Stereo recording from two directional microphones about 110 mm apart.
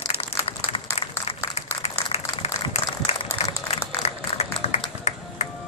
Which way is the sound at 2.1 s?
75° left (ahead or behind).